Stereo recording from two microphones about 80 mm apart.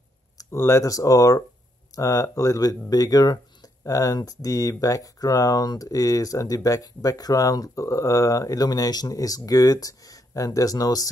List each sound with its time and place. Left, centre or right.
0.5 s speech: left